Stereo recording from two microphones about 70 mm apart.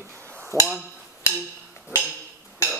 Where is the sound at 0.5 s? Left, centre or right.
Left.